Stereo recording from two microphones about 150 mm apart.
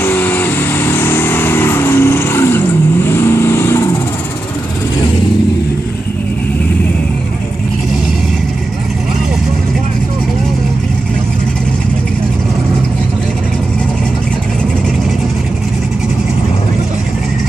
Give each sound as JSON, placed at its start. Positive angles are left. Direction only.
{"t": 0.0, "sound": "vehicle", "side_deg": 10}